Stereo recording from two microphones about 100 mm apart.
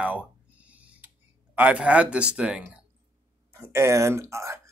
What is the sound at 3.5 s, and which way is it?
Speech, 25° right (ahead or behind).